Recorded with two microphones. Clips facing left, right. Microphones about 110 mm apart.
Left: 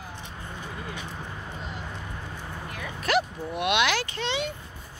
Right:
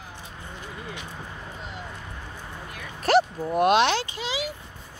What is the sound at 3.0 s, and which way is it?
Speech, 35° right (ahead or behind).